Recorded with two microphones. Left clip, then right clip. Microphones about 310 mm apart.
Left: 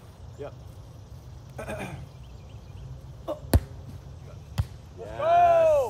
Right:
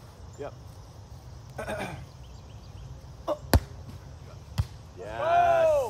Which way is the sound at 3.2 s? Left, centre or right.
Centre.